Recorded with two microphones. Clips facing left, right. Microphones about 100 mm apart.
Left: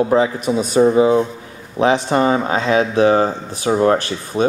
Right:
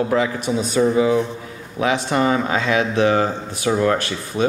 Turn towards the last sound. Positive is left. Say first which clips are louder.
# left 4 dB
turn(degrees=30)  # may be behind; listen again after turning